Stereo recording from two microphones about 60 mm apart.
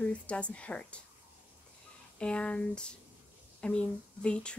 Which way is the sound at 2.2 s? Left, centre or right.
Centre.